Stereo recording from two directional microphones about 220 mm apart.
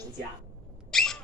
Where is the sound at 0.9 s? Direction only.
Centre (ahead or behind).